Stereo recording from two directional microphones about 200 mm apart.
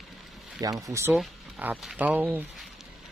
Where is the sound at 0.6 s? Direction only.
15° right (ahead or behind).